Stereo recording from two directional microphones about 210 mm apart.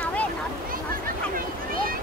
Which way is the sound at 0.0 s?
5° left (ahead or behind).